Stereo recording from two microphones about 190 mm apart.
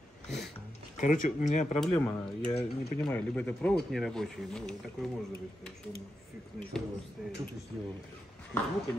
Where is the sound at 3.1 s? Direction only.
5° left (ahead or behind).